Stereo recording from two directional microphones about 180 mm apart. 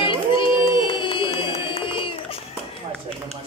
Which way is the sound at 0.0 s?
30° left (ahead or behind).